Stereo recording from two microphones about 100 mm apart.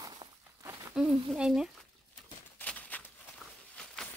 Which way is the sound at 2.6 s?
15° left (ahead or behind).